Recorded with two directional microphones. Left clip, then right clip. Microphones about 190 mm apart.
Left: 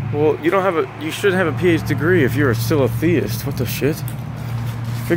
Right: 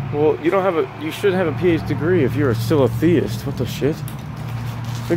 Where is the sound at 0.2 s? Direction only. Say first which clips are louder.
Left 1 dB; 5° right (ahead or behind).